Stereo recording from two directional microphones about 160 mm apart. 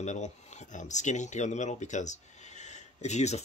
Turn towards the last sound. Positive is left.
turn(degrees=45)  # may be behind; listen again after turning